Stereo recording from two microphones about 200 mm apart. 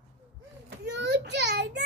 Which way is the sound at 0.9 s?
60° right (ahead or behind).